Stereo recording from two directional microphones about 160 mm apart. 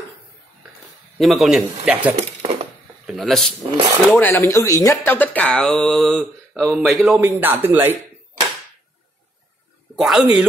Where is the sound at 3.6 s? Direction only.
25° right (ahead or behind).